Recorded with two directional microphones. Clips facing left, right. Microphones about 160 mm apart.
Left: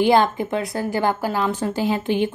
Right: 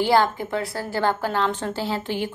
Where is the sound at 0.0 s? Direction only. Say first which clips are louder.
Left 3 dB; 20° left (ahead or behind).